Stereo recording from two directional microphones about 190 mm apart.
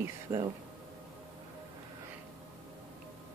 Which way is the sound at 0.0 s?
20° right (ahead or behind).